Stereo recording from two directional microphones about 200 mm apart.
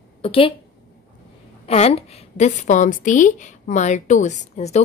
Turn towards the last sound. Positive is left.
turn(degrees=35)  # may be behind; listen again after turning